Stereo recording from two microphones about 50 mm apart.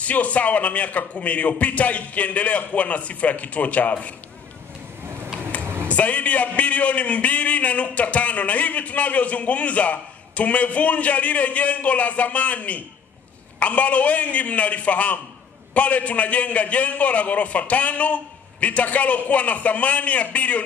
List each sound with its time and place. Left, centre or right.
0.0 s a man's voice: left
5.6 s a sound: right
5.9 s a man's voice: left